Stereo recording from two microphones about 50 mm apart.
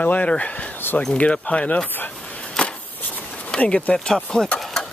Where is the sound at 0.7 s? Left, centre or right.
Left.